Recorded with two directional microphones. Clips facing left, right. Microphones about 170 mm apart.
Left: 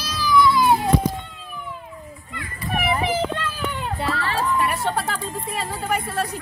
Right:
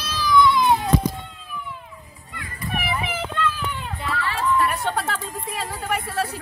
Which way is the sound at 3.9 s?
40° left (ahead or behind).